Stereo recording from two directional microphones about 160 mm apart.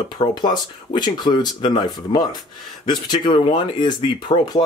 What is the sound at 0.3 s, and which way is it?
Speech, 25° left (ahead or behind).